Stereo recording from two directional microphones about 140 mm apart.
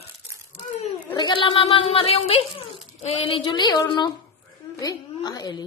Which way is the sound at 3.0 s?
45° left (ahead or behind).